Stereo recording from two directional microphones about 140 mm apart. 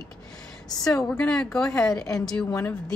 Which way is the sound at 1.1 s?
5° left (ahead or behind).